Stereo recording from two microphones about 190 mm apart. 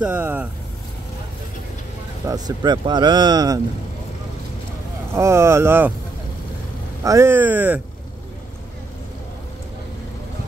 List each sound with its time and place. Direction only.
0.0 s speech: 10° right (ahead or behind)
2.2 s speech: 20° right (ahead or behind)
5.1 s speech: 15° right (ahead or behind)
7.0 s speech: 15° right (ahead or behind)